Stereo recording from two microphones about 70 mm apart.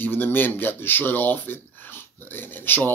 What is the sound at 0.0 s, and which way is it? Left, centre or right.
Speech, left.